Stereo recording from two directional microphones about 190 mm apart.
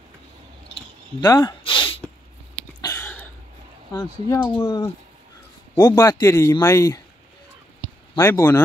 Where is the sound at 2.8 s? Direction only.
15° left (ahead or behind).